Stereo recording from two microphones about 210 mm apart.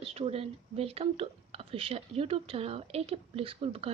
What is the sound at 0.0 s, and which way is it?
A woman's voice, 30° right (ahead or behind).